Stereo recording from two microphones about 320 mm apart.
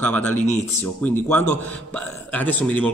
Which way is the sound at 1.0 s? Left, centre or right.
Centre.